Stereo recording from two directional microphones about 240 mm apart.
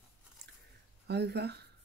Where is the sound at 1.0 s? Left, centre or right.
Right.